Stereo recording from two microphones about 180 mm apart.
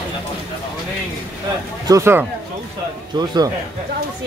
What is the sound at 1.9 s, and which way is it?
Speech, 15° right (ahead or behind).